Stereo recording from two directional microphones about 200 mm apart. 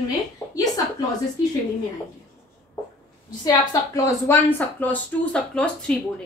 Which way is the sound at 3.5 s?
15° left (ahead or behind).